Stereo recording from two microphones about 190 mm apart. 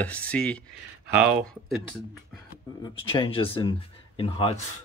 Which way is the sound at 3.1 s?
25° left (ahead or behind).